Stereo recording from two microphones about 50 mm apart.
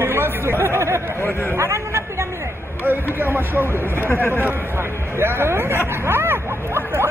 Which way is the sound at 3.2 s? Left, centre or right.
Right.